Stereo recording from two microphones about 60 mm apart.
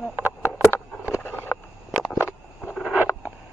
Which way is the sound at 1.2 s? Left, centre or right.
Left.